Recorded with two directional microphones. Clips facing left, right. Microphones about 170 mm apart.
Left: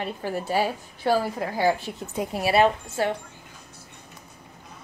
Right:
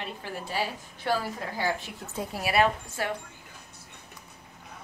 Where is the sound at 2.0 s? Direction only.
20° left (ahead or behind).